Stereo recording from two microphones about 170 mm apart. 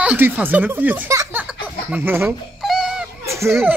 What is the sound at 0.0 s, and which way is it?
Speech, 10° right (ahead or behind).